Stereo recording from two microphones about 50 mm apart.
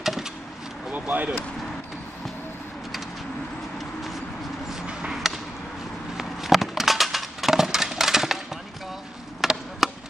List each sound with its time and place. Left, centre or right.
0.0 s power windows: centre
0.9 s speech: right
5.2 s a sound: centre
9.4 s chop: centre